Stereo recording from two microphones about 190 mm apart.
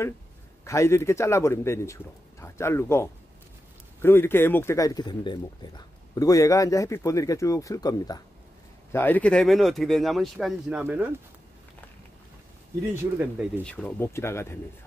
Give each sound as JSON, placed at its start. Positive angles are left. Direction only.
{"t": 0.7, "sound": "speech", "side_deg": 15}
{"t": 12.9, "sound": "speech", "side_deg": -10}
{"t": 13.7, "sound": "speech", "side_deg": 5}